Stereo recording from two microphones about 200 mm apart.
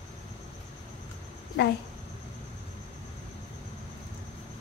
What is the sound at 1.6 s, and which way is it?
Speech, 60° left (ahead or behind).